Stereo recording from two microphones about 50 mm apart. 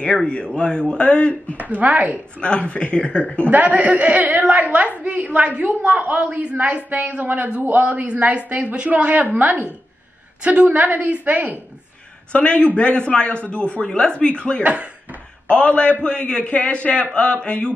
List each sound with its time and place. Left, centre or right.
0.0 s a man's voice: left
1.6 s speech: right
2.4 s a man's voice: left
3.4 s a woman's voice: right
10.4 s a woman's voice: right
12.3 s a man's voice: left